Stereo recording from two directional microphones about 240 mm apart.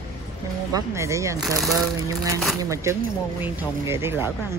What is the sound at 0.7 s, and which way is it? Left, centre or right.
Speech, centre.